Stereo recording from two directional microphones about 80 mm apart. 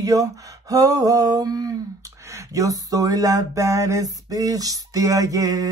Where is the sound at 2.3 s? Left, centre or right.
Right.